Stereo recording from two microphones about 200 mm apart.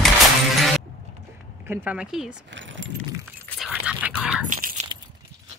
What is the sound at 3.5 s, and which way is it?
Whispering, 5° right (ahead or behind).